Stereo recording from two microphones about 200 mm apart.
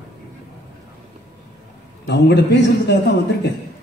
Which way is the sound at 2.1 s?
60° left (ahead or behind).